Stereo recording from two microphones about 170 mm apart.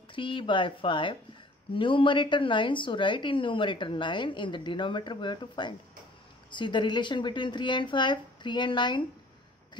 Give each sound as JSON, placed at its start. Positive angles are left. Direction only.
{"t": 0.1, "sound": "a woman's voice", "side_deg": 30}